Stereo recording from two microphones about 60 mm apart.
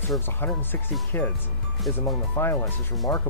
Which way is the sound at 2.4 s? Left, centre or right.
Left.